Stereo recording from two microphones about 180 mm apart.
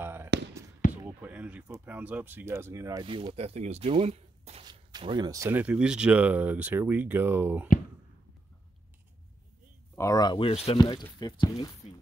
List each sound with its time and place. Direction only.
0.0 s basketball bounce: 15° right (ahead or behind)
1.0 s speech: 10° right (ahead or behind)
3.1 s speech: 30° right (ahead or behind); by 7.6 s 10° right (ahead or behind)
9.9 s speech: 20° left (ahead or behind); by 10.8 s 35° left (ahead or behind)
10.8 s speech: 25° left (ahead or behind)